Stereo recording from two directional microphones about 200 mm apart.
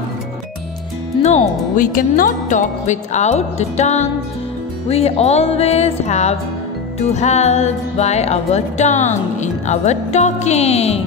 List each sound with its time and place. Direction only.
1.2 s speech: 35° left (ahead or behind)